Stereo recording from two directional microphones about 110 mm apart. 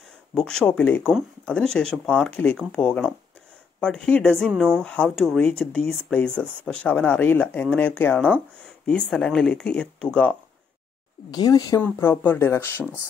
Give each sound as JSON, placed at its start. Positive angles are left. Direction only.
{"t": 0.3, "sound": "speech", "side_deg": 5}
{"t": 11.2, "sound": "speech", "side_deg": 40}
{"t": 11.8, "sound": "speech", "side_deg": 20}